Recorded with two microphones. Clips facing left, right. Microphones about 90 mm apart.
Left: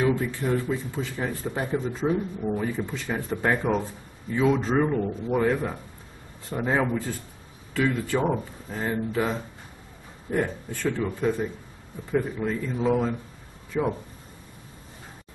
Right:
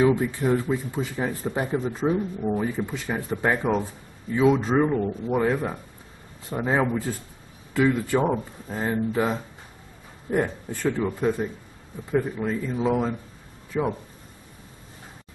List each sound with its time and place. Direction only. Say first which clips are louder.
0.0 s speech: right 4 dB; 15° right (ahead or behind)
12.1 s speech: right 1 dB; 10° right (ahead or behind)